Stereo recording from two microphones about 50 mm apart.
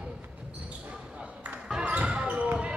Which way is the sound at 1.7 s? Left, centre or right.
Centre.